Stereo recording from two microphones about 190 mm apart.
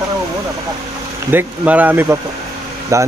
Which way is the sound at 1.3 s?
10° right (ahead or behind).